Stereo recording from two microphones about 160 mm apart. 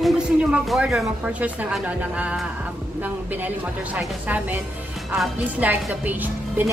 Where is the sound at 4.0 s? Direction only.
10° right (ahead or behind).